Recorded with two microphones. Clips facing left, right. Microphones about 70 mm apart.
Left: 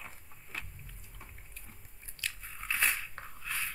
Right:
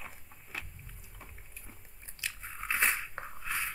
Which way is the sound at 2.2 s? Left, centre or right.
Right.